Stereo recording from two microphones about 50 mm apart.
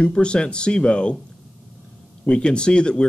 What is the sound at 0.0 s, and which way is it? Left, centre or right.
Speech, centre.